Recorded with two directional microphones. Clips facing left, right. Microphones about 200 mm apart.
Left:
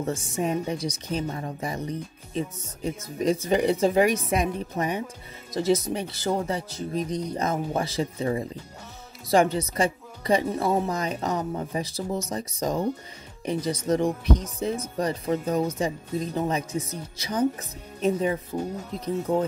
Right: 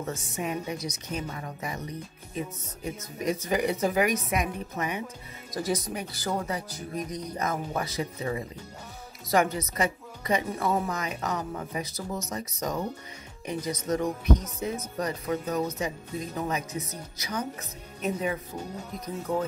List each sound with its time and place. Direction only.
0.0 s a woman's voice: 30° left (ahead or behind)